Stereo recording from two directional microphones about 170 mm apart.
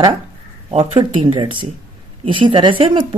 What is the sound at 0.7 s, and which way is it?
A woman's voice, 30° right (ahead or behind).